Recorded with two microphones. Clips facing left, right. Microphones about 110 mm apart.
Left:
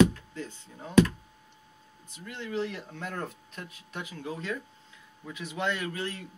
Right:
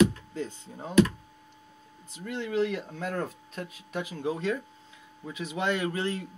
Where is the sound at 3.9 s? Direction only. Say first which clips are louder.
Right 6 dB; 25° right (ahead or behind).